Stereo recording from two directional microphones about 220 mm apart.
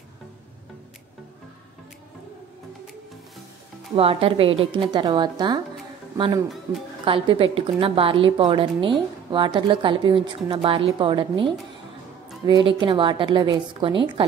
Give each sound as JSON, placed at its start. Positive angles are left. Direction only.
{"t": 3.9, "sound": "a woman's voice", "side_deg": -25}